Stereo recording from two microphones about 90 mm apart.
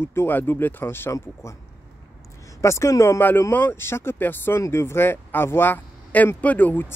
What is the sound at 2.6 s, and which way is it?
Speech, 30° left (ahead or behind).